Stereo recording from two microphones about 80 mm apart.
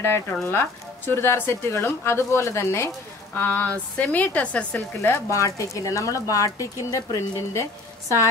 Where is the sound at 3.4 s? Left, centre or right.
Left.